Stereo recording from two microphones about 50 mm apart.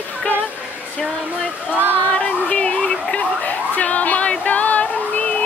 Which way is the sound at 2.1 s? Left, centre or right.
Left.